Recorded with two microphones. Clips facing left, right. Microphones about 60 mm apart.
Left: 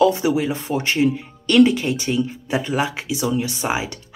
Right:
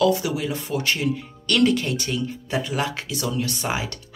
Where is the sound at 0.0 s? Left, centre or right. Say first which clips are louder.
Left 4 dB; left.